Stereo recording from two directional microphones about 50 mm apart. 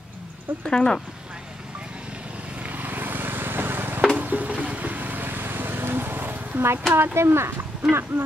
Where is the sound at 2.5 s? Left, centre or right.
Right.